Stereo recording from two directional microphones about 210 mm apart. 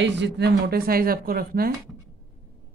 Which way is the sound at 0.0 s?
55° right (ahead or behind).